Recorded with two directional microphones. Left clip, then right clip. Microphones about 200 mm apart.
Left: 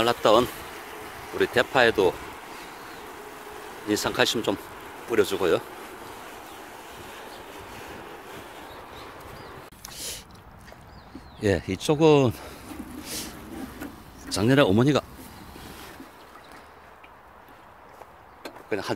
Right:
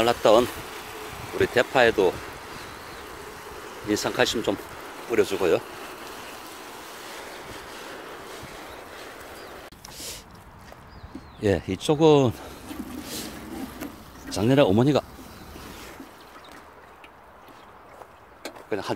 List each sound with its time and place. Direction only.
0.0 s speech: 5° right (ahead or behind)
3.9 s speech: centre (ahead or behind)
9.8 s a sound: centre (ahead or behind)
11.4 s speech: 5° right (ahead or behind)
14.3 s speech: 5° left (ahead or behind)
18.7 s speech: centre (ahead or behind)